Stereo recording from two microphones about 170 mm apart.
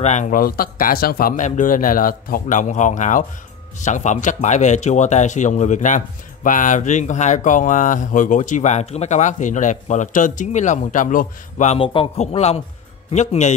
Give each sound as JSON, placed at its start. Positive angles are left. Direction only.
{"t": 0.0, "sound": "speech", "side_deg": 45}
{"t": 11.8, "sound": "a man's voice", "side_deg": 30}